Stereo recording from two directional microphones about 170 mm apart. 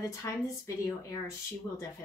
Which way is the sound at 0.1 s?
15° left (ahead or behind).